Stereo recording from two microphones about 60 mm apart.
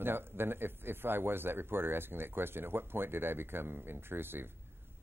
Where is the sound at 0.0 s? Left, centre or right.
Right.